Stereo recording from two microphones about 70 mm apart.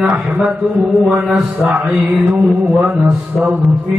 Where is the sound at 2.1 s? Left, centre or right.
Right.